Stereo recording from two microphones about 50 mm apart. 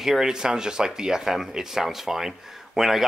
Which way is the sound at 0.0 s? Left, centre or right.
Centre.